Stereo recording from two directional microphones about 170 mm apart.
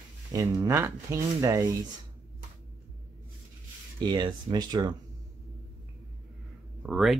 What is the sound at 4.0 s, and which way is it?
Speech, 25° right (ahead or behind).